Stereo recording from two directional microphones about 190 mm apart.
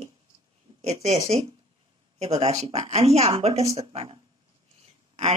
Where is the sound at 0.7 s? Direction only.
30° right (ahead or behind).